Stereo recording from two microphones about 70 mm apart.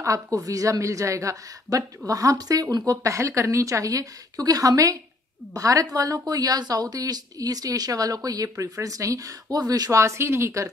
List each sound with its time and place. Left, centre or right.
0.0 s a woman's voice: right